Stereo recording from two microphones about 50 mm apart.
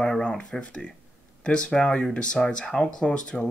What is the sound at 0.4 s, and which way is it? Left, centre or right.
Speech, left.